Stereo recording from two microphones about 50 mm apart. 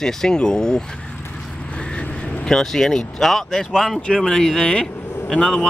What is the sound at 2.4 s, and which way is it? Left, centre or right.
Speech, centre.